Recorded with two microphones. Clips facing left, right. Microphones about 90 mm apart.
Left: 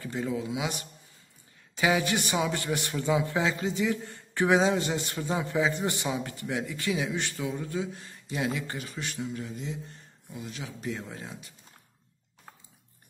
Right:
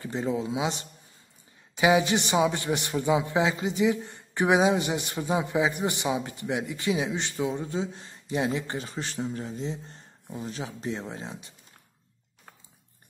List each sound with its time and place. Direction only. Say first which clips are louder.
0.0 s a man's voice: right 3 dB; 25° right (ahead or behind)